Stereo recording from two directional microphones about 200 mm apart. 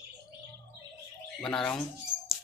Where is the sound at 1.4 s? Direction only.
5° left (ahead or behind).